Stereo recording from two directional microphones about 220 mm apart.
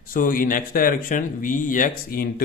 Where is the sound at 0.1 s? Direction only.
40° left (ahead or behind).